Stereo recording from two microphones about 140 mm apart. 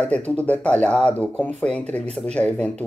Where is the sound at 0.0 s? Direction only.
10° left (ahead or behind).